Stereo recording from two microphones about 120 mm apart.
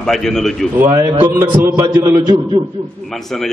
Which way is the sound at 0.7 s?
20° right (ahead or behind).